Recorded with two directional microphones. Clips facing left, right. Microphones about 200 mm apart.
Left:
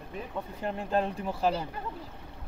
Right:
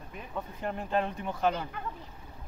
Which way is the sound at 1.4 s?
35° left (ahead or behind).